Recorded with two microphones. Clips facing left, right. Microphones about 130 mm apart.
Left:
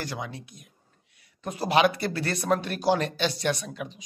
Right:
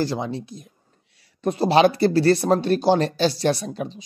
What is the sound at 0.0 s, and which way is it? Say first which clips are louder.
Speech: right 10 dB; 30° right (ahead or behind).